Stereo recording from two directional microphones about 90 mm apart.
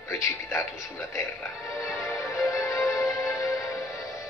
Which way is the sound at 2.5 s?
35° left (ahead or behind).